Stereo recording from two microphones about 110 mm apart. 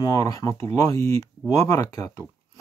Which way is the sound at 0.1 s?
35° left (ahead or behind).